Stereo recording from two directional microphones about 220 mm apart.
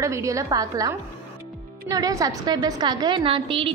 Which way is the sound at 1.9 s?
15° right (ahead or behind).